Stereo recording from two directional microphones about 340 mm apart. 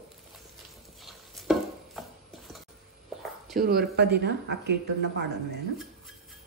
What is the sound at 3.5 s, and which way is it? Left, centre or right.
Speech, right.